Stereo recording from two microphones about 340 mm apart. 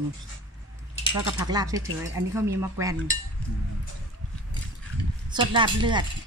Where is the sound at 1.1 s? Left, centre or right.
Centre.